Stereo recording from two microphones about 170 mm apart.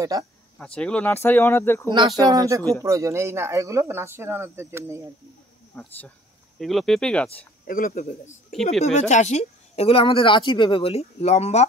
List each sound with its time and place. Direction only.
0.0 s speech: 20° right (ahead or behind)
0.7 s speech: 5° left (ahead or behind)
1.9 s speech: 25° right (ahead or behind)
5.8 s speech: 10° left (ahead or behind)
7.6 s speech: 55° left (ahead or behind)
8.8 s speech: 40° left (ahead or behind)